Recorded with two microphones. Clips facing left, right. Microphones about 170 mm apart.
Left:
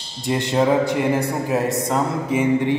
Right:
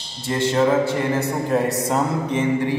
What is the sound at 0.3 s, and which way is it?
Mantra, 15° left (ahead or behind).